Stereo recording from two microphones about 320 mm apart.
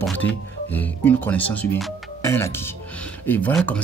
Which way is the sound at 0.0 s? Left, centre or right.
Centre.